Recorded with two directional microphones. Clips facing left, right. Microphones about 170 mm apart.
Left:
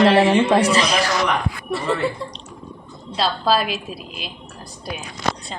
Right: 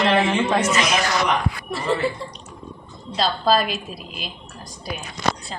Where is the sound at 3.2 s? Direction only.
5° left (ahead or behind).